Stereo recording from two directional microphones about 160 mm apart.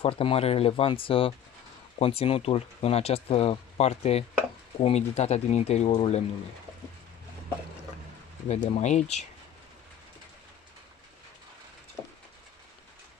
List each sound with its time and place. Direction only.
0.0 s speech: 35° left (ahead or behind)
8.6 s speech: 45° left (ahead or behind)